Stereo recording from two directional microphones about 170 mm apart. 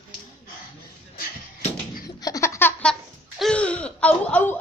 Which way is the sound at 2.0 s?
20° left (ahead or behind).